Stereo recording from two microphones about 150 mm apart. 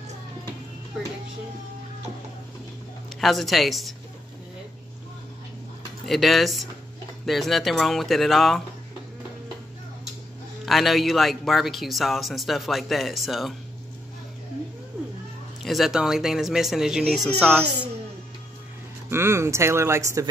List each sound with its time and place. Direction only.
3.2 s a man's voice: centre (ahead or behind)
6.0 s a man's voice: centre (ahead or behind)
10.6 s a man's voice: centre (ahead or behind)
15.6 s a man's voice: centre (ahead or behind)
17.4 s speech: 15° right (ahead or behind)
19.0 s speech: 15° right (ahead or behind)